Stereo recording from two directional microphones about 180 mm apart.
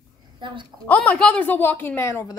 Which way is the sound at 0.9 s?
5° left (ahead or behind).